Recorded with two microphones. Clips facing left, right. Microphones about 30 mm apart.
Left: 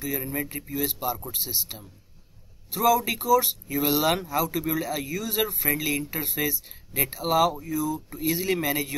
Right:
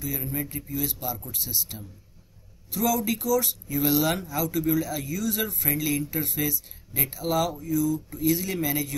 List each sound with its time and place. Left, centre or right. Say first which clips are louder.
0.0 s speech: left 2 dB; centre